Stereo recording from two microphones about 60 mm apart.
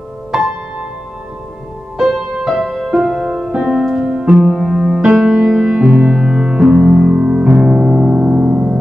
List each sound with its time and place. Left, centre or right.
0.3 s music: centre
2.0 s music: centre
4.5 s music: centre